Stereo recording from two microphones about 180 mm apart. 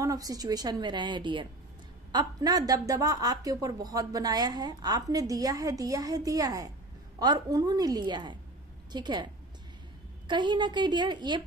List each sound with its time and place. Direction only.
0.0 s a woman's voice: 20° right (ahead or behind)